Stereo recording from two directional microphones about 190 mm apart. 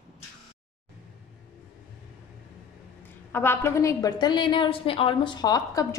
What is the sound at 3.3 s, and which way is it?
A woman's voice, 10° left (ahead or behind).